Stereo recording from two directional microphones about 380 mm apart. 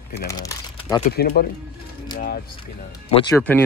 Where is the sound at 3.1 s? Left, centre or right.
Centre.